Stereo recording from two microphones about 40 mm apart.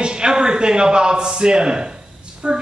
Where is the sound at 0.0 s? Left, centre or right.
Right.